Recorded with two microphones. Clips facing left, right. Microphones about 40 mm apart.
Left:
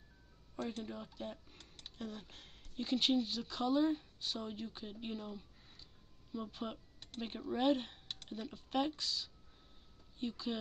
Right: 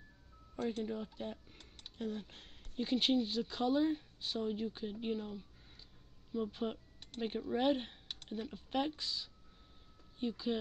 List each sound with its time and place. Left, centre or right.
0.6 s speech: centre
2.0 s speech: centre
2.3 s speech: right
3.6 s speech: centre